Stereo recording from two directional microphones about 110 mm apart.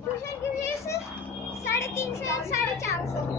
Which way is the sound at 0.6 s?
25° left (ahead or behind).